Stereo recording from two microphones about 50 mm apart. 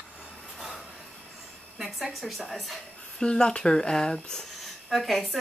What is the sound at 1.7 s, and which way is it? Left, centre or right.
Speech, centre.